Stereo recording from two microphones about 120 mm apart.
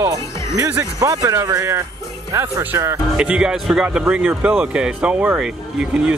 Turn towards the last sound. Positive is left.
turn(degrees=-5)  # may be behind; listen again after turning